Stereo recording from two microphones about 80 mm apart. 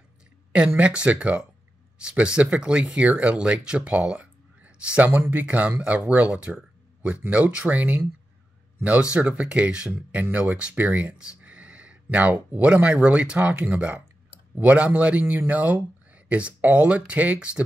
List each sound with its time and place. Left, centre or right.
0.5 s speech: centre
9.1 s speech: centre